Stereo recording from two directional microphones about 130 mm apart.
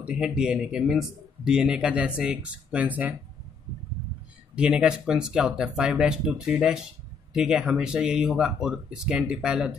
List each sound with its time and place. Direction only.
0.0 s speech: 10° right (ahead or behind)
4.6 s speech: 5° right (ahead or behind)